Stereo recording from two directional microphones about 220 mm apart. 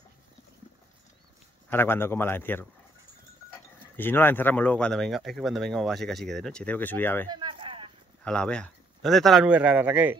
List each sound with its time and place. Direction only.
1.7 s a man's voice: 10° left (ahead or behind)
3.9 s speech: 10° left (ahead or behind)
7.2 s a sound: 20° right (ahead or behind)
8.2 s speech: 5° left (ahead or behind)